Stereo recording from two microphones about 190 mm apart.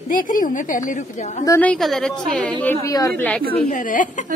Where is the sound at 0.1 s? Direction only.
45° left (ahead or behind).